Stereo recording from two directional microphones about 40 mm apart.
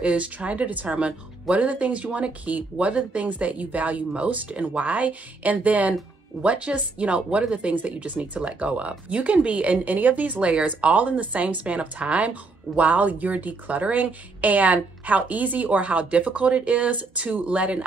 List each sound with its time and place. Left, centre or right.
0.0 s a woman's voice: right
8.4 s a woman's voice: right